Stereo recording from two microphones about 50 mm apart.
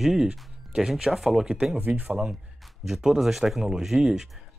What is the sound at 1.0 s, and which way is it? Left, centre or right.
Speech, centre.